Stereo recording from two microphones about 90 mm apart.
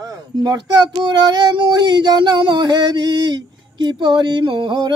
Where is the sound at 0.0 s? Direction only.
45° right (ahead or behind).